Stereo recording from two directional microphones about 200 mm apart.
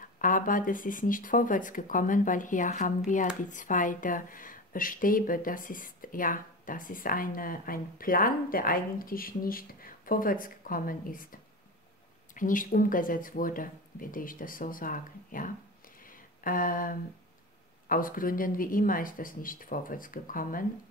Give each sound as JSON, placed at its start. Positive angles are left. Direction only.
{"t": 0.0, "sound": "speech", "side_deg": 40}
{"t": 12.4, "sound": "speech", "side_deg": 40}